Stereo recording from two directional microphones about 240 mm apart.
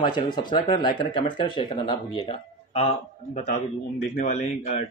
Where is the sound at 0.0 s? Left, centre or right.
Centre.